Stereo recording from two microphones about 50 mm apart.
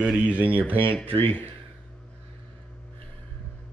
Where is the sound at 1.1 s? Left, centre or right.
Left.